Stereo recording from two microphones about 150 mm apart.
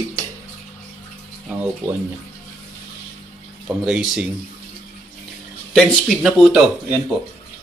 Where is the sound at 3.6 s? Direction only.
5° right (ahead or behind).